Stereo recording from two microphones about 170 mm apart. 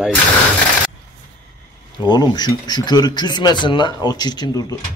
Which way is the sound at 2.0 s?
25° left (ahead or behind).